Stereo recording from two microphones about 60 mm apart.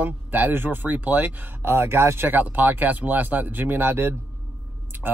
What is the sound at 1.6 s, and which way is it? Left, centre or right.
Speech, right.